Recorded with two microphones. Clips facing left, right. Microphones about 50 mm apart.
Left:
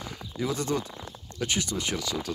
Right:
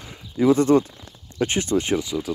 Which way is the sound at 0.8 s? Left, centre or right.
Left.